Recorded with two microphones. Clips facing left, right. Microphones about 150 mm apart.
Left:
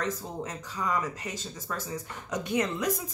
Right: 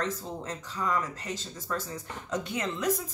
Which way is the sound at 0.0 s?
15° left (ahead or behind).